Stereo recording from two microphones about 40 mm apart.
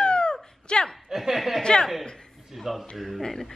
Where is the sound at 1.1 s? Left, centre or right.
Centre.